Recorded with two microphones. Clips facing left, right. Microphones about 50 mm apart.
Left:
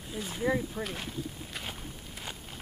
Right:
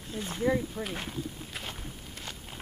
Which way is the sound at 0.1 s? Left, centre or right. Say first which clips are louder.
Right 2 dB; centre.